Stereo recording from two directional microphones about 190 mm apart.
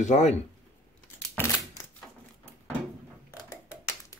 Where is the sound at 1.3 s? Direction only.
10° left (ahead or behind).